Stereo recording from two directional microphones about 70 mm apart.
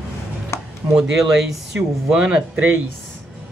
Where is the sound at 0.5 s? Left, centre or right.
Left.